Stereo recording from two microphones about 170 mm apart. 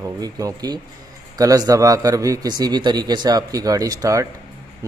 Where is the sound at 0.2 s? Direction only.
20° right (ahead or behind).